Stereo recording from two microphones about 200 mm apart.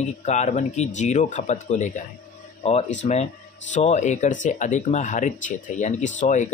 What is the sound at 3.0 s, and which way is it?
Speech, 30° left (ahead or behind).